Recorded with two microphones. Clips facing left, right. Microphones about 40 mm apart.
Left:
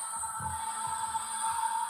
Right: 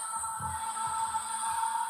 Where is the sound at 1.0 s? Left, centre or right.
Left.